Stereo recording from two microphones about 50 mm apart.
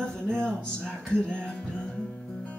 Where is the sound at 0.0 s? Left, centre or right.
Centre.